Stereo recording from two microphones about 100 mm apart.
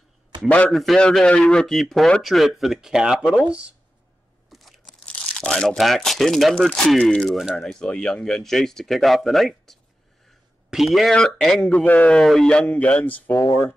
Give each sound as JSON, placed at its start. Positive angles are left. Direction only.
{"t": 0.5, "sound": "speech", "side_deg": 15}
{"t": 4.5, "sound": "speech", "side_deg": 0}
{"t": 7.3, "sound": "speech", "side_deg": -5}
{"t": 7.6, "sound": "speech", "side_deg": 10}
{"t": 13.4, "sound": "speech", "side_deg": 30}